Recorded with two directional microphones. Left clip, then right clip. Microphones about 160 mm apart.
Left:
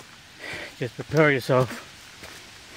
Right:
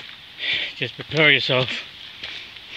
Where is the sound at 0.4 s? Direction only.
15° left (ahead or behind).